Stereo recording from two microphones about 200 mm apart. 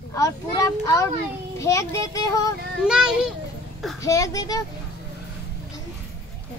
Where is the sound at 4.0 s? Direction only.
15° left (ahead or behind).